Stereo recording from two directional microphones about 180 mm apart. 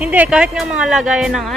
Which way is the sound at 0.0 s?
5° right (ahead or behind).